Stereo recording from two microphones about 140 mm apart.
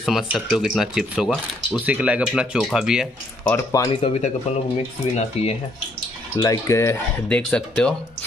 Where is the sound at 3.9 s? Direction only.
40° left (ahead or behind).